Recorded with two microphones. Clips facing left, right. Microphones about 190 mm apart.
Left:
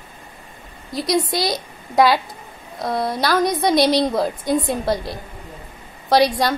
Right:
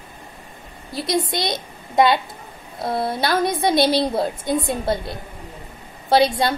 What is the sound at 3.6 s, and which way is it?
Speech, centre (ahead or behind).